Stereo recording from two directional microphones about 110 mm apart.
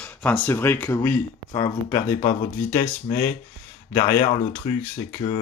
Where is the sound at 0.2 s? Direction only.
15° left (ahead or behind).